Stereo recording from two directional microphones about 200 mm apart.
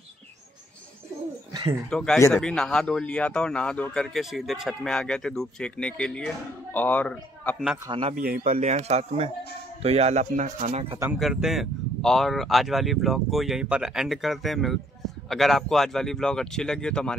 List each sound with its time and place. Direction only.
1.5 s a sound: 20° right (ahead or behind)
1.9 s speech: 5° left (ahead or behind)
7.5 s speech: 5° right (ahead or behind)
7.8 s speech: 25° right (ahead or behind)
8.1 s speech: 45° right (ahead or behind)
8.5 s speech: 35° right (ahead or behind)
11.1 s speech: centre (ahead or behind)